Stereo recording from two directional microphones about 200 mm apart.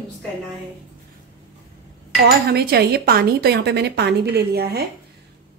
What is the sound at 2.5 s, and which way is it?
A woman's voice, 50° right (ahead or behind).